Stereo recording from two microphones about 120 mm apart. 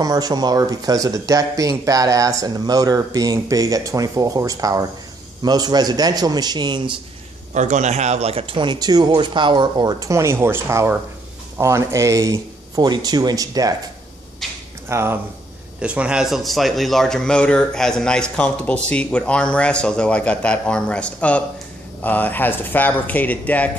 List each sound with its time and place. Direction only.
0.0 s speech: 30° right (ahead or behind)
7.5 s speech: 85° right; by 13.7 s 30° right (ahead or behind)
14.9 s speech: 20° right (ahead or behind)
15.8 s speech: 10° right (ahead or behind); by 23.7 s 10° left (ahead or behind)